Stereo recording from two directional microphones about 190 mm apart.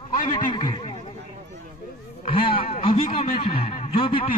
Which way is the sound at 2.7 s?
30° left (ahead or behind).